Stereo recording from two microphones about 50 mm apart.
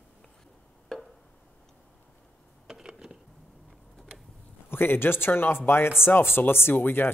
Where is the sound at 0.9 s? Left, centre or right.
Centre.